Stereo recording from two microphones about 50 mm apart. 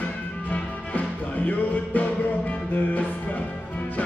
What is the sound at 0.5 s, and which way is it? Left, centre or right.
Music, left.